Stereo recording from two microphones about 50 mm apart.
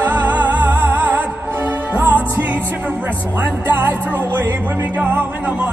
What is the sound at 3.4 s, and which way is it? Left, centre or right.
Music, right.